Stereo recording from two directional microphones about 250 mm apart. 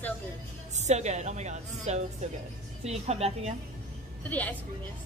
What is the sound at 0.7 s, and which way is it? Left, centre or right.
A woman's voice, right.